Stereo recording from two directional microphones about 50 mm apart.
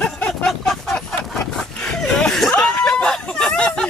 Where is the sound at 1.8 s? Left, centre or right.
Centre.